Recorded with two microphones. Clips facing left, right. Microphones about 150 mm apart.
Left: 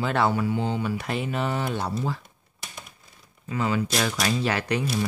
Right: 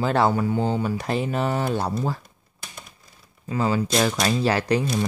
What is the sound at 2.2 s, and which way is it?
Typing, centre (ahead or behind).